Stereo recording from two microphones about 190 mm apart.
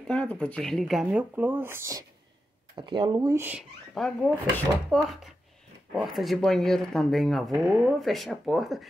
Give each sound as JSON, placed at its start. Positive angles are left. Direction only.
{"t": 0.1, "sound": "speech", "side_deg": 5}
{"t": 3.9, "sound": "speech", "side_deg": 5}